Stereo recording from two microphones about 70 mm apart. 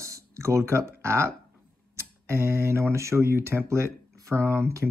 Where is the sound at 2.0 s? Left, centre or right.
Right.